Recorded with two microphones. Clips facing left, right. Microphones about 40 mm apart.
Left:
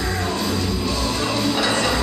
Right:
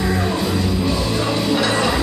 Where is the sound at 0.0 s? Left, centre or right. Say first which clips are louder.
Right 4 dB; centre.